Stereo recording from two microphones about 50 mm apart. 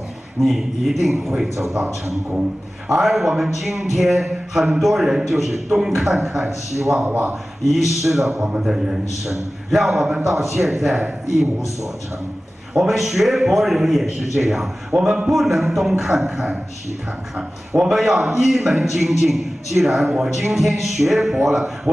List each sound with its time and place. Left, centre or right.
0.4 s a man's voice: centre
2.9 s a man's voice: centre
12.7 s a man's voice: centre
17.4 s a man's voice: centre